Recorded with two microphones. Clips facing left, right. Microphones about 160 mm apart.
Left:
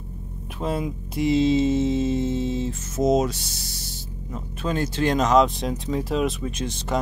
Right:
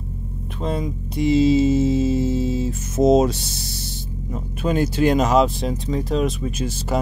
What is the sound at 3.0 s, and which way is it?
Speech, 25° right (ahead or behind).